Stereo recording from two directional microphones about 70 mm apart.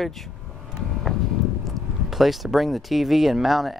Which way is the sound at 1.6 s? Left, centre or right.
Centre.